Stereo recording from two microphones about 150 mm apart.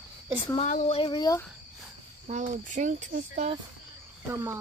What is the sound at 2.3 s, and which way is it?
Speech, 55° right (ahead or behind).